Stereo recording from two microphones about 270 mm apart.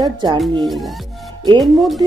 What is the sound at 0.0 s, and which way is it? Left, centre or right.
Music, centre.